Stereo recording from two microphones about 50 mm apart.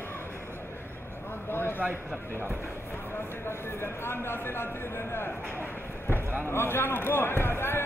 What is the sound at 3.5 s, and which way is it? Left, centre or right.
Speech, left.